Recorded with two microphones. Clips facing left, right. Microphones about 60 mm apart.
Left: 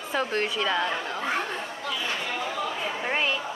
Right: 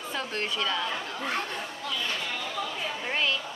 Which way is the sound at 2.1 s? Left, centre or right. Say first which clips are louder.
Left 3 dB; left.